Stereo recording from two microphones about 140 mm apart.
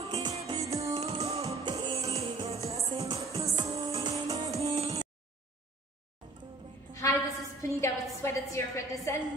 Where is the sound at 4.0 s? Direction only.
40° right (ahead or behind).